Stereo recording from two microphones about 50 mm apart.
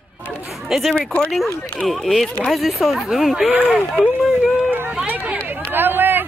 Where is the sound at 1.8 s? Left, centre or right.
Centre.